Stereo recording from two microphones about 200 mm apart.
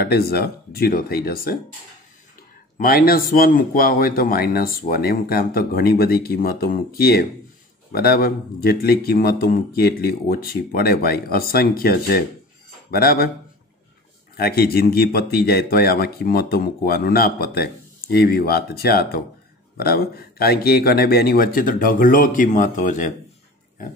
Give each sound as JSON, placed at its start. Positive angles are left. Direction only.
{"t": 0.0, "sound": "speech", "side_deg": 50}
{"t": 2.8, "sound": "speech", "side_deg": 50}
{"t": 14.3, "sound": "speech", "side_deg": 50}